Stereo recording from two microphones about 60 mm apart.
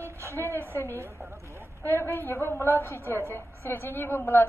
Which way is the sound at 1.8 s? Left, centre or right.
Left.